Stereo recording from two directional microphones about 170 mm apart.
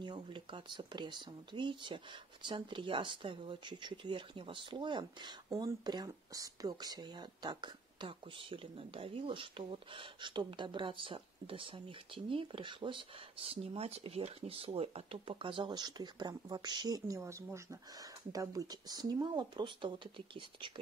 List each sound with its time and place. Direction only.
0.0 s speech: 25° right (ahead or behind)